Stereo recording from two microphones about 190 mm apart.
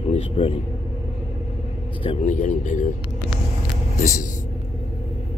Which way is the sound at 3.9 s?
40° left (ahead or behind).